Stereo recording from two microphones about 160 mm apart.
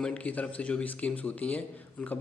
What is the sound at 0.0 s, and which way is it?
Speech, 5° left (ahead or behind).